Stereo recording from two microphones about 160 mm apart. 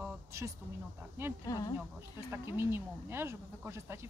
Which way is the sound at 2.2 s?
15° right (ahead or behind).